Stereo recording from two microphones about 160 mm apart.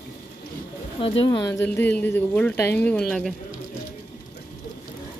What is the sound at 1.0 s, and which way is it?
Speech, 30° left (ahead or behind).